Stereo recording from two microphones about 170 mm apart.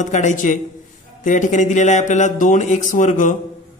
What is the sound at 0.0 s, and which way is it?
Speech, 45° left (ahead or behind).